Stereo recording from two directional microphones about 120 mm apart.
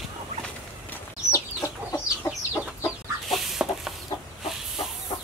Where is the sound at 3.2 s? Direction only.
Centre (ahead or behind).